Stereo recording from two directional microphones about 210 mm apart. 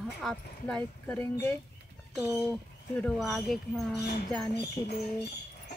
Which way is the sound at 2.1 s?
5° right (ahead or behind).